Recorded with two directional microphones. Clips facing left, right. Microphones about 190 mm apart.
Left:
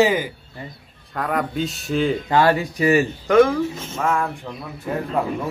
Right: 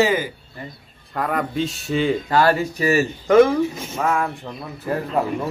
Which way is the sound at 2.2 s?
20° left (ahead or behind).